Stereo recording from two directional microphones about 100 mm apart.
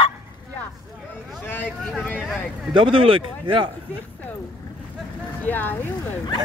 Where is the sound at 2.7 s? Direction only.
60° right (ahead or behind).